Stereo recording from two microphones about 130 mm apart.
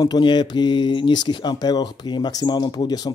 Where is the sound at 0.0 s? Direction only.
35° left (ahead or behind).